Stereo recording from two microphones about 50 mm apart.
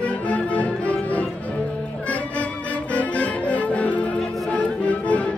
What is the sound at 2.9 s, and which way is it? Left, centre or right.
Music, left.